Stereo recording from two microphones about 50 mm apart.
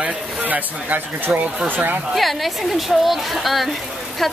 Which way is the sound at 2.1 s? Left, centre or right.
Centre.